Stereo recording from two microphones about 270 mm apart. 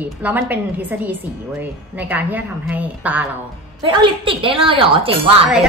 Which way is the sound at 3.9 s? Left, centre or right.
Centre.